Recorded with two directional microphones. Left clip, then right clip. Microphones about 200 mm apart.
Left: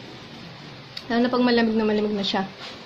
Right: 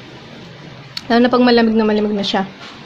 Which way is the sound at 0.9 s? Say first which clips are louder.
Right 9 dB; 25° right (ahead or behind).